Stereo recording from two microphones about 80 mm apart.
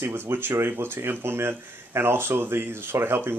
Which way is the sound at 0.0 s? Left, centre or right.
Right.